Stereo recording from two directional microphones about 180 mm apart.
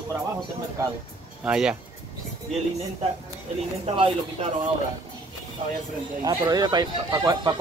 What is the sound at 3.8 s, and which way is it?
Speech, 30° right (ahead or behind).